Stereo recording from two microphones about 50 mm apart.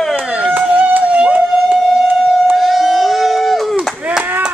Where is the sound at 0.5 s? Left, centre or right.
Right.